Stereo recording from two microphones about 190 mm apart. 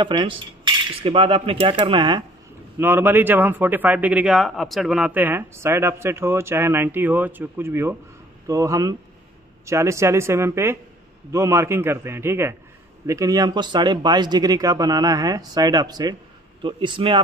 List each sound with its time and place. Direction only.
0.0 s speech: 25° right (ahead or behind)
2.8 s a man's voice: 10° right (ahead or behind); by 17.2 s 25° right (ahead or behind)